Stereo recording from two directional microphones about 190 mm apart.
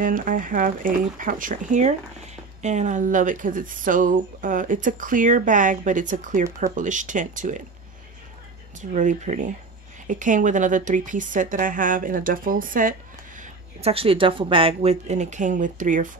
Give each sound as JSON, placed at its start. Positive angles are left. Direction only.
{"t": 0.0, "sound": "speech", "side_deg": -45}
{"t": 8.7, "sound": "speech", "side_deg": -40}
{"t": 13.4, "sound": "speech", "side_deg": -35}